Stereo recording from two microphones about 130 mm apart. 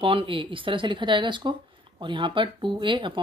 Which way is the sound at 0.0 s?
40° right (ahead or behind).